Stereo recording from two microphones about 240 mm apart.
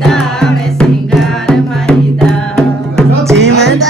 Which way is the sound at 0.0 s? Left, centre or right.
Centre.